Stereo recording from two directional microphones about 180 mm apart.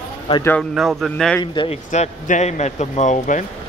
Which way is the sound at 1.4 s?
25° left (ahead or behind).